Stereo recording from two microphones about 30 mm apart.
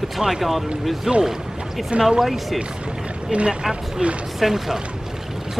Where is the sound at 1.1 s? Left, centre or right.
Right.